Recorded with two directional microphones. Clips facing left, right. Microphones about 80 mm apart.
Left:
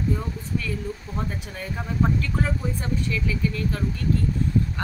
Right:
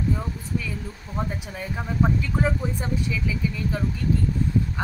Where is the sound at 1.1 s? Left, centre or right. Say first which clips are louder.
Right 1 dB; centre.